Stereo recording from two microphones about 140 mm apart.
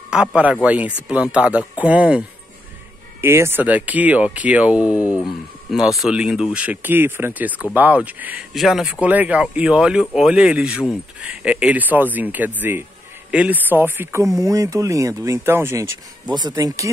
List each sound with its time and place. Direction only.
0.1 s speech: 5° right (ahead or behind)
16.3 s speech: 30° right (ahead or behind)